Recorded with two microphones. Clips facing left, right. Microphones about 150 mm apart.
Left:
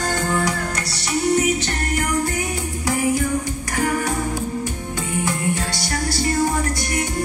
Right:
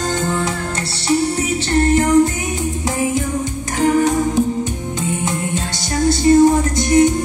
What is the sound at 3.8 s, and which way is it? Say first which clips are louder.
Music: right 8 dB; 20° right (ahead or behind).